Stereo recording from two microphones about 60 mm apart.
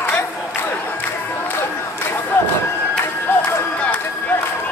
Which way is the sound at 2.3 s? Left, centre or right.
Left.